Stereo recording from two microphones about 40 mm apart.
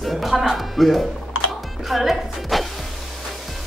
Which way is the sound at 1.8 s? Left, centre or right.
Centre.